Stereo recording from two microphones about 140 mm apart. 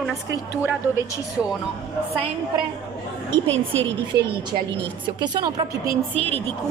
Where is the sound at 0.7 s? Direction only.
15° right (ahead or behind).